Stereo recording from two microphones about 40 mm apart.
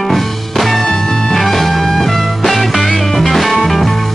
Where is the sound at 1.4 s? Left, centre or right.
Centre.